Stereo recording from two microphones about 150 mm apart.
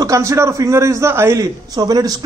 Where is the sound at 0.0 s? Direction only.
20° right (ahead or behind).